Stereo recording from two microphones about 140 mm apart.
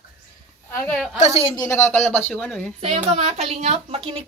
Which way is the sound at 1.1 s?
50° left (ahead or behind).